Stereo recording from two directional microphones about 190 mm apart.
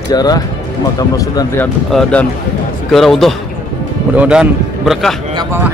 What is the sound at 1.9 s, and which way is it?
A man's voice, 5° left (ahead or behind).